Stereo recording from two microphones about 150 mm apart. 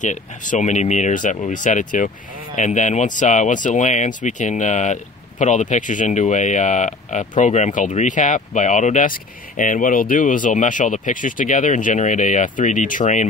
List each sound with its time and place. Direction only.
0.0 s speech: 55° left (ahead or behind)